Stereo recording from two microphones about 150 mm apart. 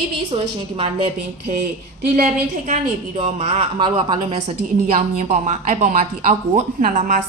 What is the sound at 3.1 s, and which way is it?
A woman's voice, 40° right (ahead or behind).